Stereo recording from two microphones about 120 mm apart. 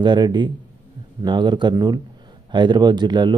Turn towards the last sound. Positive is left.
turn(degrees=-40)  # may be behind; listen again after turning